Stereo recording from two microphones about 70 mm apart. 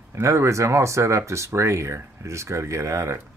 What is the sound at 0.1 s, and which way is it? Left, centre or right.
Speech, right.